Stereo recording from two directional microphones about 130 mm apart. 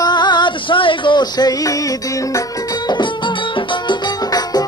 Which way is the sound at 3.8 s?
30° left (ahead or behind).